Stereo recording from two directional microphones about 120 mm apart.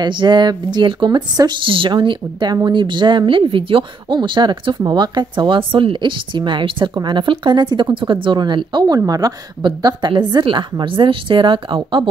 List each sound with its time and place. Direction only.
0.0 s speech: 40° right (ahead or behind)